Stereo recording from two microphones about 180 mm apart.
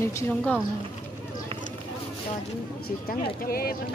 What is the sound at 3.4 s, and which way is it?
Speech, 55° left (ahead or behind).